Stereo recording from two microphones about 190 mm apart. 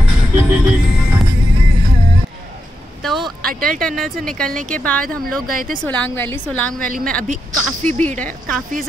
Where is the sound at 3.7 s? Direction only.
5° left (ahead or behind).